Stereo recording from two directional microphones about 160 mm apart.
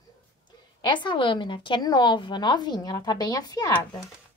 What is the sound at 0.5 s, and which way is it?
A woman's voice, 30° left (ahead or behind).